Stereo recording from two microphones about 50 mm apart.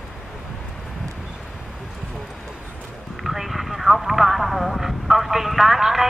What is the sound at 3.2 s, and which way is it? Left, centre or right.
Speech, centre.